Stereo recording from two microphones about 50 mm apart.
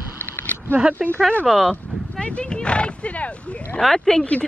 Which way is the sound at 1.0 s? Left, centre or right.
Centre.